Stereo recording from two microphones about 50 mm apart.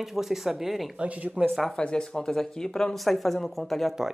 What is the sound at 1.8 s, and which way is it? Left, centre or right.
Speech, centre.